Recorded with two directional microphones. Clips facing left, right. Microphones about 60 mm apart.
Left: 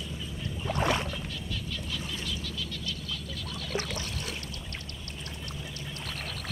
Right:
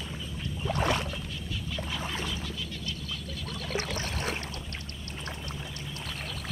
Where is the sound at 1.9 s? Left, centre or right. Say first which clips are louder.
Right 3 dB; right.